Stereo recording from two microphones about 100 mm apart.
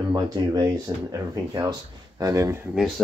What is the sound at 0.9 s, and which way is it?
Speech, 40° right (ahead or behind).